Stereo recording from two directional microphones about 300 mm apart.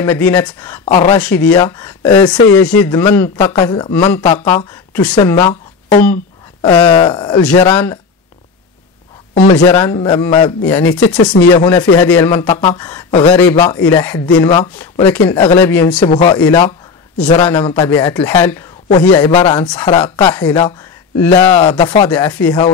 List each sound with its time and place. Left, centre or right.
0.0 s speech: centre
0.8 s speech: centre
1.2 s speech: centre
9.3 s speech: left